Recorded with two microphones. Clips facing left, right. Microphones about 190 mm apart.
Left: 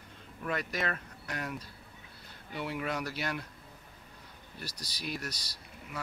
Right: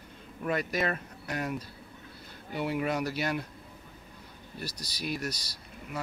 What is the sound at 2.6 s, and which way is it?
Speech, 15° right (ahead or behind).